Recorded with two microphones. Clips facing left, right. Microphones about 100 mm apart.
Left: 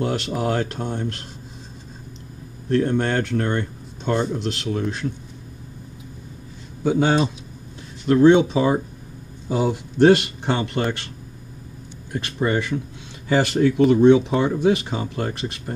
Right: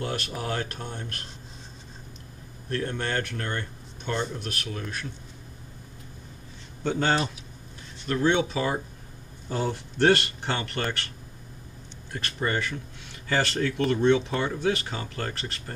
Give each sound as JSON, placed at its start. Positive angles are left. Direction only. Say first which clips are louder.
{"t": 0.0, "sound": "speech", "louder": "left 8 dB", "side_deg": 20}
{"t": 2.7, "sound": "speech", "louder": "left 9 dB", "side_deg": 20}
{"t": 6.8, "sound": "speech", "louder": "left 6 dB", "side_deg": 10}
{"t": 12.1, "sound": "speech", "louder": "left 6 dB", "side_deg": 15}